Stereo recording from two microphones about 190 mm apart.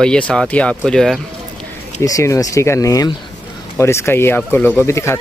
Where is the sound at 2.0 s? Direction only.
15° left (ahead or behind).